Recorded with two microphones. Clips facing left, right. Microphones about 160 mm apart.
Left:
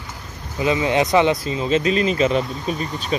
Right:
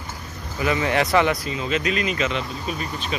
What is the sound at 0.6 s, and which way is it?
Speech, 20° left (ahead or behind).